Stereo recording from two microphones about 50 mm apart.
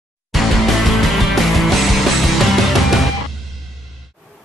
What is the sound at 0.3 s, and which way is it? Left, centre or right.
Music, centre.